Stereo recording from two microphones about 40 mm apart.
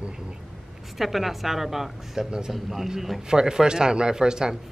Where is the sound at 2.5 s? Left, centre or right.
Centre.